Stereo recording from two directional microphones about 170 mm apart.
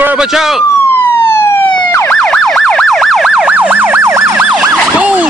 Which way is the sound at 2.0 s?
5° left (ahead or behind).